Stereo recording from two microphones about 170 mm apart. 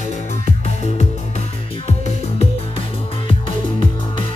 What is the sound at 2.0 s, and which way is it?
Music, 35° left (ahead or behind).